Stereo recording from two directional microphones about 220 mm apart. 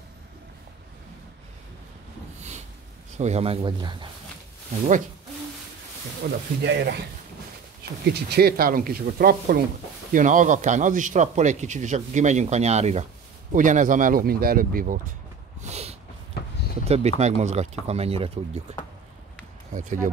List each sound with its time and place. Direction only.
3.2 s speech: 30° right (ahead or behind)
6.2 s speech: 45° right (ahead or behind)
8.0 s a man's voice: 45° right (ahead or behind)
15.6 s a sound: 30° right (ahead or behind)
16.8 s speech: 30° right (ahead or behind)